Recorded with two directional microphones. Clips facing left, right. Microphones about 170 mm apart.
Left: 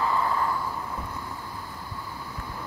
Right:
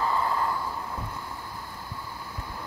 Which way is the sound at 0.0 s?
30° right (ahead or behind).